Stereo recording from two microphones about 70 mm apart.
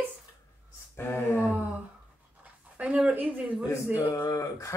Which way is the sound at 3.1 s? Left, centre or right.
Centre.